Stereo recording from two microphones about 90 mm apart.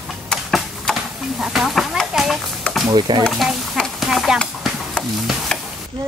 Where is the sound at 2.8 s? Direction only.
55° right (ahead or behind).